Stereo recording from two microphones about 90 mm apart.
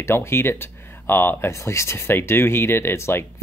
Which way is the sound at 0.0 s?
30° left (ahead or behind).